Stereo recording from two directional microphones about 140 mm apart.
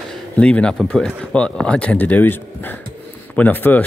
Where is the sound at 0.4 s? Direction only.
10° left (ahead or behind).